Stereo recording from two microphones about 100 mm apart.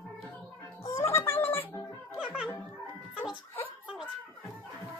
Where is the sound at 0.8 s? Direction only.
30° left (ahead or behind).